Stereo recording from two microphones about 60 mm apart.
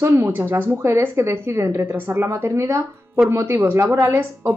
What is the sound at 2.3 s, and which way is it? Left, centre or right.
A woman's voice, right.